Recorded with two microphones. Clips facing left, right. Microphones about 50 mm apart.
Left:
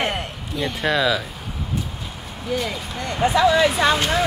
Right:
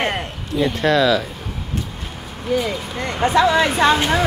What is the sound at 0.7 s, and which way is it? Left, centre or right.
Speech, centre.